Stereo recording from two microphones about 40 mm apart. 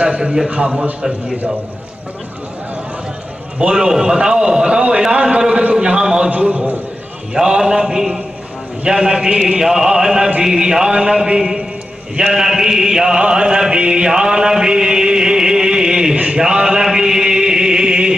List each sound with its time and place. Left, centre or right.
0.0 s a man's voice: right
3.7 s a man's voice: centre
5.4 s a sound: right
6.5 s a sound: right
7.3 s a man's voice: centre
12.2 s mantra: centre
16.3 s chant: centre